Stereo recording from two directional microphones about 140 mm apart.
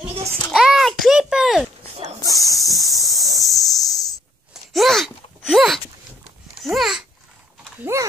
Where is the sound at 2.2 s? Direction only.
25° left (ahead or behind).